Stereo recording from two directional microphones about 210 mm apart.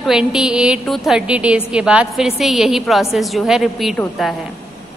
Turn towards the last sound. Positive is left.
turn(degrees=0)  # may be behind; listen again after turning